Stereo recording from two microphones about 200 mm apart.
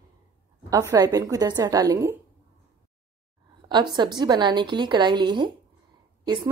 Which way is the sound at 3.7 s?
20° right (ahead or behind).